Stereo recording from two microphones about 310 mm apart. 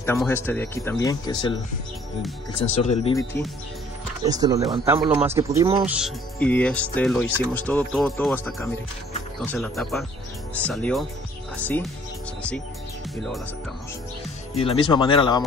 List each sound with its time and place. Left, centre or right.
0.0 s speech: centre
2.8 s speech: centre
4.2 s speech: centre
14.5 s speech: centre